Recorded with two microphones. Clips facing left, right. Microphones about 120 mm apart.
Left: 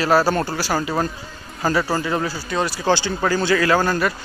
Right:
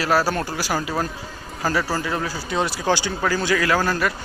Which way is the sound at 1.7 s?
10° left (ahead or behind).